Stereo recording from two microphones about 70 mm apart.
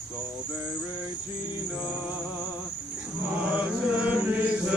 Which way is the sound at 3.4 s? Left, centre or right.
Centre.